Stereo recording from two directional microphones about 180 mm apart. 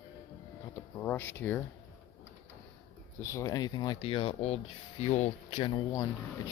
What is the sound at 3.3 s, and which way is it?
Speech, 15° left (ahead or behind).